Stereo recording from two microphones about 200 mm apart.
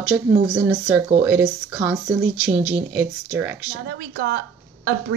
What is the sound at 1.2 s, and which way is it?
Speech, 10° right (ahead or behind).